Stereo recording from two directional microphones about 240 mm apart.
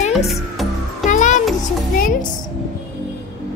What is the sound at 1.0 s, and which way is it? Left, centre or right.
Music, left.